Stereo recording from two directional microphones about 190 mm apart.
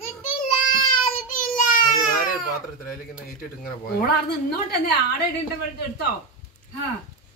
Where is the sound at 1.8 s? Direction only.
45° left (ahead or behind).